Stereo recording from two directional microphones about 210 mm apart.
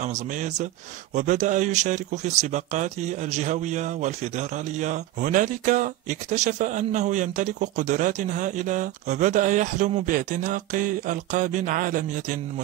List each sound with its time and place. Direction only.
0.0 s speech: 35° right (ahead or behind)